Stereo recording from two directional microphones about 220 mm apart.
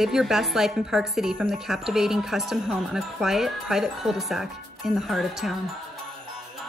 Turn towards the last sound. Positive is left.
turn(degrees=0)  # may be behind; listen again after turning